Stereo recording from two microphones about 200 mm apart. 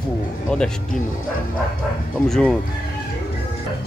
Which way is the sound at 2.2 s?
5° left (ahead or behind).